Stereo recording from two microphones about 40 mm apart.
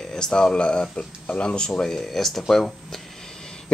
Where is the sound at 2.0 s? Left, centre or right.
Centre.